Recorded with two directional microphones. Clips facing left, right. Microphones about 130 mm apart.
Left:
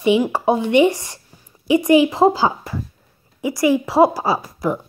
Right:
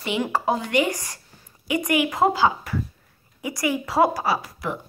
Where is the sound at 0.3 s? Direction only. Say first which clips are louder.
Left 6 dB; 25° left (ahead or behind).